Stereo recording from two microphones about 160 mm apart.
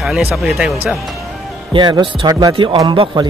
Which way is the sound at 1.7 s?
30° right (ahead or behind).